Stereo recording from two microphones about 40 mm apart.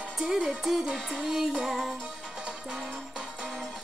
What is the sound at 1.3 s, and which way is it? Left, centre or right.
Music, centre.